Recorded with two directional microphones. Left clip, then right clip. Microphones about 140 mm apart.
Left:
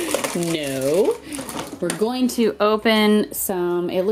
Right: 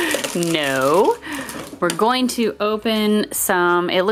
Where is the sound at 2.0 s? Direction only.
25° right (ahead or behind).